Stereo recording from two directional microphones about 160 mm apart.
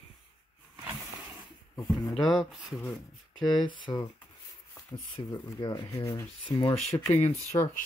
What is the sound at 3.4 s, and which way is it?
Speech, 25° left (ahead or behind).